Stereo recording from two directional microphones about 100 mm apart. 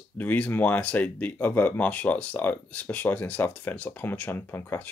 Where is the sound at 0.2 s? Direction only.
20° left (ahead or behind).